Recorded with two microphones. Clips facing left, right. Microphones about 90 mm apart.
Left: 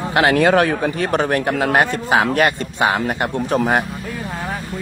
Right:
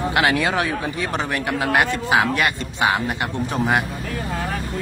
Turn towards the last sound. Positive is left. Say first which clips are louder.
# left 3 dB
turn(degrees=40)  # may be behind; listen again after turning